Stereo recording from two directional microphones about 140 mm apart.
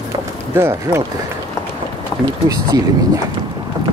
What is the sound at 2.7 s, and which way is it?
Speech, 30° right (ahead or behind).